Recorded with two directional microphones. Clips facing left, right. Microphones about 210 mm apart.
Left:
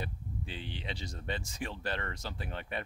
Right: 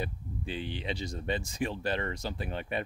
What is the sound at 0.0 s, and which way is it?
Speech, 15° right (ahead or behind).